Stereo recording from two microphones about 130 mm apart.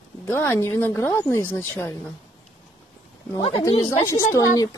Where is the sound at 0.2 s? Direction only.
15° left (ahead or behind).